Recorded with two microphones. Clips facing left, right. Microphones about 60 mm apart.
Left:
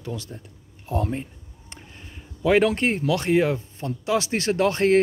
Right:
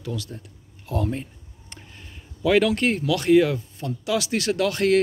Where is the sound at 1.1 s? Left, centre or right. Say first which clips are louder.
Even; centre.